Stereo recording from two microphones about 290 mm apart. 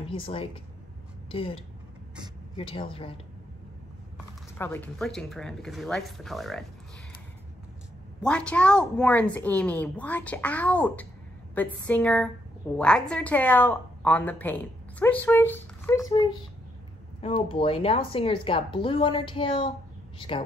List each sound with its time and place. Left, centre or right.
0.0 s a woman's voice: centre
4.6 s a woman's voice: centre
8.2 s a woman's voice: centre